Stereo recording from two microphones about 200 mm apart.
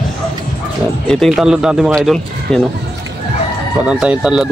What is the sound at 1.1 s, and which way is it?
Speech, centre (ahead or behind).